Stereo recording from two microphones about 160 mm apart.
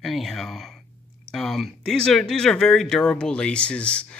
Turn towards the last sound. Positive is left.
turn(degrees=5)  # may be behind; listen again after turning